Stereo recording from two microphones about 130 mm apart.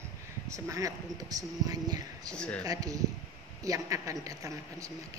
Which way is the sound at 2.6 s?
30° right (ahead or behind).